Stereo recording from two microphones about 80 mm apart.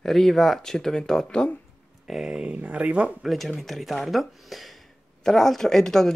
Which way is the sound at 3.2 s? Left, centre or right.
Centre.